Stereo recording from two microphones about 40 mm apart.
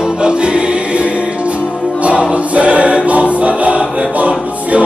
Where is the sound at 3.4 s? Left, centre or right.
Right.